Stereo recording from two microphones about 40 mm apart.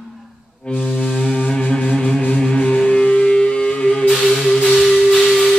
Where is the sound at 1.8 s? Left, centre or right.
Left.